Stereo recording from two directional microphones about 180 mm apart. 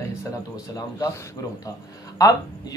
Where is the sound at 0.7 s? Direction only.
15° left (ahead or behind).